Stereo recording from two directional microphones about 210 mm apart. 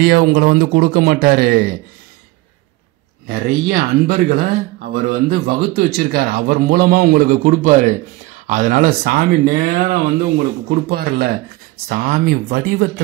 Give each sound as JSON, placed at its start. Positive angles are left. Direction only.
{"t": 0.0, "sound": "speech", "side_deg": -50}
{"t": 3.3, "sound": "speech", "side_deg": -45}